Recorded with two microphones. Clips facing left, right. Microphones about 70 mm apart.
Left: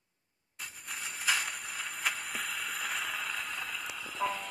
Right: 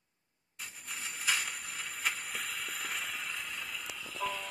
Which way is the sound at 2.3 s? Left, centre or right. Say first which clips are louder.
Left 3 dB; left.